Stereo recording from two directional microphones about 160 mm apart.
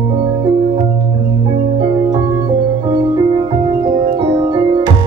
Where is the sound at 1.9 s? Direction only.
20° right (ahead or behind).